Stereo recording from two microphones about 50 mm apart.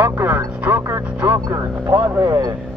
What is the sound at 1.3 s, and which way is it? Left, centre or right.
Speech, right.